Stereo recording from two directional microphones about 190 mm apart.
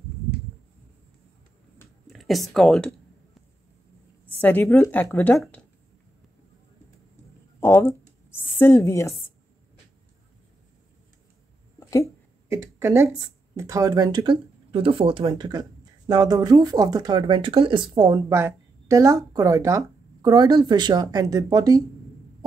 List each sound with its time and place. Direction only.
2.1 s speech: centre (ahead or behind)
4.4 s a woman's voice: 10° left (ahead or behind)
7.6 s a woman's voice: 10° left (ahead or behind)
11.8 s a sound: 15° left (ahead or behind)
12.4 s a sound: 15° right (ahead or behind)
13.6 s speech: 15° right (ahead or behind)